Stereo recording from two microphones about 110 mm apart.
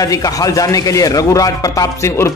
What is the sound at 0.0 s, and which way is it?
A man's voice, 35° left (ahead or behind).